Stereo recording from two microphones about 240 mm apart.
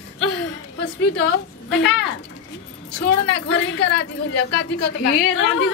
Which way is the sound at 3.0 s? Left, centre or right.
Left.